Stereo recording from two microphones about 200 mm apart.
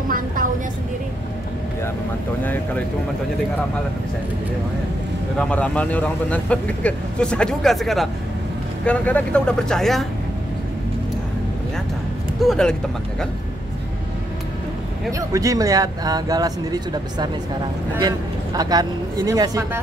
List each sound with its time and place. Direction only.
2.4 s speech: 10° left (ahead or behind)
5.4 s speech: 5° left (ahead or behind)
12.4 s speech: 5° left (ahead or behind)
15.0 s speech: 15° right (ahead or behind)